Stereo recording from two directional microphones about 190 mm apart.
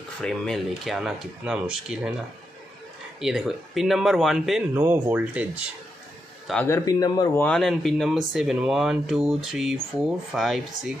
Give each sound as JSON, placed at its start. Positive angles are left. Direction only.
{"t": 0.2, "sound": "speech", "side_deg": 0}
{"t": 3.2, "sound": "speech", "side_deg": 0}
{"t": 6.4, "sound": "a man's voice", "side_deg": 5}
{"t": 6.7, "sound": "speech", "side_deg": 20}
{"t": 7.4, "sound": "speech", "side_deg": 5}